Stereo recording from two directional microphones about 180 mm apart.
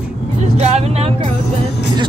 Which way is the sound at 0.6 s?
35° right (ahead or behind).